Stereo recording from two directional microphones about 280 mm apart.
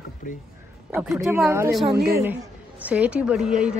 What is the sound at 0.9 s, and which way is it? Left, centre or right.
A woman's voice, centre.